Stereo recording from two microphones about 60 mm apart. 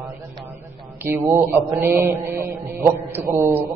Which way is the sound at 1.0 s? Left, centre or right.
Right.